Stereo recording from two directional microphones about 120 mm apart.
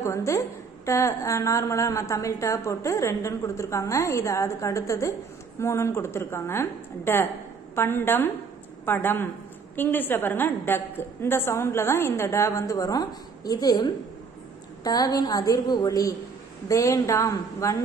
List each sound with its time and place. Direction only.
0.0 s a woman's voice: 25° left (ahead or behind)